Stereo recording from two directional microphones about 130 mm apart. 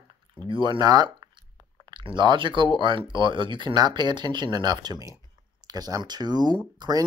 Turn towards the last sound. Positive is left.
turn(degrees=-30)  # may be behind; listen again after turning